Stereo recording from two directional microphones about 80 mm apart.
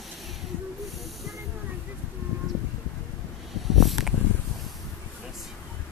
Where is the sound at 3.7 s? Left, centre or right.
Centre.